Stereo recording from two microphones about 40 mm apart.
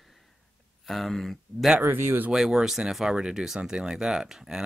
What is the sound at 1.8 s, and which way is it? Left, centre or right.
Speech, right.